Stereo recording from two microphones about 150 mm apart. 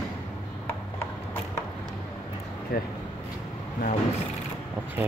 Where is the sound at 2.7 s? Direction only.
90° left.